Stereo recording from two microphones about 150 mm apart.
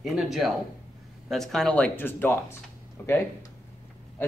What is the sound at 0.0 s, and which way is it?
Speech, centre (ahead or behind).